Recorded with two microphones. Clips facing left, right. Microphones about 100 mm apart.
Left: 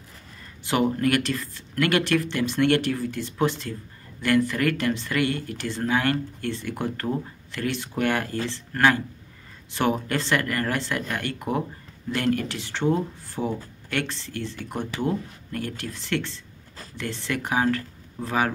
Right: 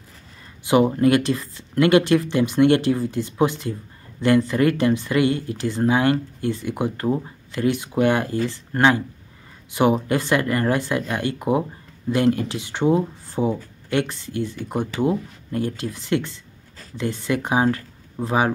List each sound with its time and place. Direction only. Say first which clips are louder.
0.7 s speech: right 6 dB; 20° right (ahead or behind)